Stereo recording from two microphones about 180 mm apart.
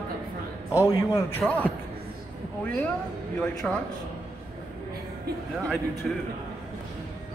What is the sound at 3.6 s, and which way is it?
Speech, 5° left (ahead or behind).